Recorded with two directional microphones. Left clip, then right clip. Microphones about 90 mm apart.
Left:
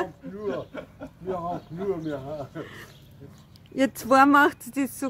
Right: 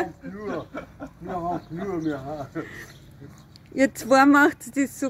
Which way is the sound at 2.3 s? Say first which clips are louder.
Right 2 dB; centre (ahead or behind).